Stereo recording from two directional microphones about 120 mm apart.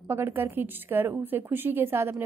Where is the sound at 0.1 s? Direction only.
20° right (ahead or behind).